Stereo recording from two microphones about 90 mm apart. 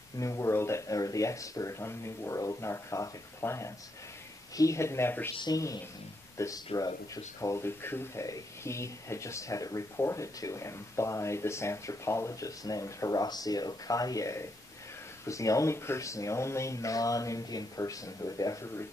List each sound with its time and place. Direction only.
0.2 s speech: 35° left (ahead or behind)
6.3 s speech: 35° left (ahead or behind)